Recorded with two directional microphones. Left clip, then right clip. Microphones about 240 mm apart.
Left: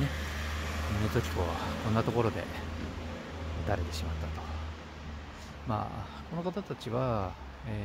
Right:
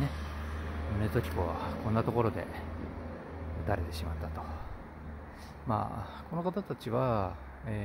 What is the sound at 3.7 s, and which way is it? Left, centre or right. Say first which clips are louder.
Speech: even; centre.